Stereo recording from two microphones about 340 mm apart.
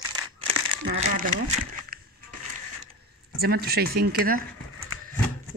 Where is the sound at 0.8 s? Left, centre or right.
Right.